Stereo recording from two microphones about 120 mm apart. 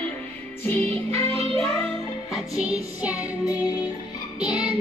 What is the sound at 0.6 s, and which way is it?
Music, 15° left (ahead or behind).